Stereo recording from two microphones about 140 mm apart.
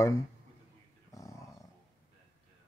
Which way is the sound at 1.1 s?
20° left (ahead or behind).